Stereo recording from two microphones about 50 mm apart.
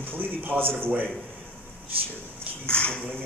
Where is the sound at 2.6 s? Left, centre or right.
Left.